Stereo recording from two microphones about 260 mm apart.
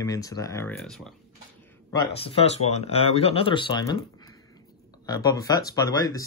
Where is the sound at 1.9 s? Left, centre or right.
Centre.